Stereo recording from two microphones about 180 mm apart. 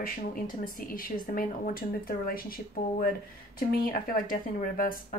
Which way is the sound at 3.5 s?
55° left (ahead or behind).